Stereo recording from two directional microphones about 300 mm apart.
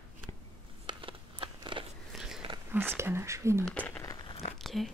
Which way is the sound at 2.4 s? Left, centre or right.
Centre.